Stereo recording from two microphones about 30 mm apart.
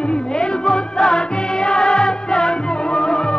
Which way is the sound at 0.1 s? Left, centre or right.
Left.